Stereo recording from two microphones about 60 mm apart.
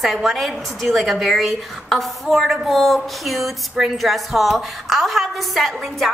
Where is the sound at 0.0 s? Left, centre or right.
Centre.